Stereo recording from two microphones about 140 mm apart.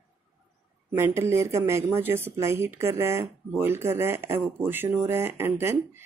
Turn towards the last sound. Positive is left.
turn(degrees=-15)  # may be behind; listen again after turning